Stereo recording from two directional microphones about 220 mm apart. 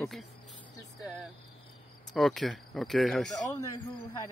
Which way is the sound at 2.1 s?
Centre (ahead or behind).